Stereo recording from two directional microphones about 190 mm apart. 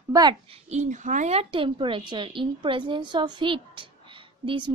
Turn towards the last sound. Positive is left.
turn(degrees=-25)  # may be behind; listen again after turning